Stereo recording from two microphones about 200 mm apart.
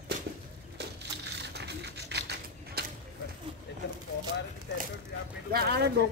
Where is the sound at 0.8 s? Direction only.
60° right (ahead or behind).